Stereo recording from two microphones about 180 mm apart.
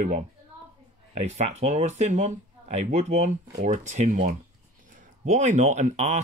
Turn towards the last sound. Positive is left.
turn(degrees=-40)  # may be behind; listen again after turning